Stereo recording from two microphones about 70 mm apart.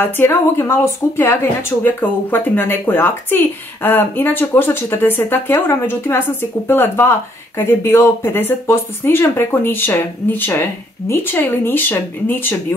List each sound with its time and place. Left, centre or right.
0.0 s speech: left